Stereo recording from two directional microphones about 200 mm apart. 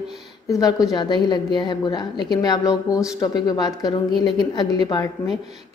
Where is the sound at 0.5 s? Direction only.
15° left (ahead or behind).